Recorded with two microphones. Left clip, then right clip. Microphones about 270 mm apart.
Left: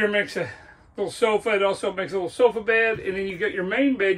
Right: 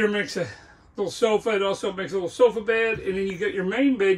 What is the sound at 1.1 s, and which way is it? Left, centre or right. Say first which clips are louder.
Speech: left 1 dB; centre.